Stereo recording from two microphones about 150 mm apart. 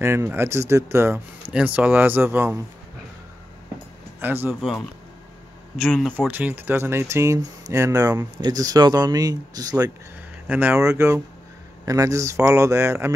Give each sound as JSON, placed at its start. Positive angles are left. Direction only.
{"t": 0.0, "sound": "speech", "side_deg": -15}
{"t": 4.2, "sound": "speech", "side_deg": -15}
{"t": 4.6, "sound": "speech", "side_deg": 0}
{"t": 6.1, "sound": "speech", "side_deg": -10}
{"t": 10.4, "sound": "speech", "side_deg": -10}